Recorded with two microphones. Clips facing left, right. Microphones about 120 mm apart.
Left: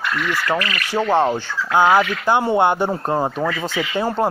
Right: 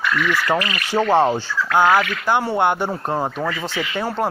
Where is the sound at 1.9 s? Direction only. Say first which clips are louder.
Left 2 dB; 15° left (ahead or behind).